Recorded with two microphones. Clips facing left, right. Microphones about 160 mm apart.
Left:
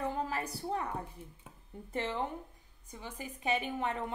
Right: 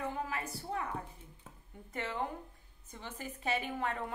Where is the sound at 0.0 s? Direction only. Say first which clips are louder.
Left 3 dB; 35° left (ahead or behind).